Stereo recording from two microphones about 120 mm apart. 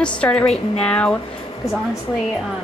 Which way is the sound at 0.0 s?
10° left (ahead or behind).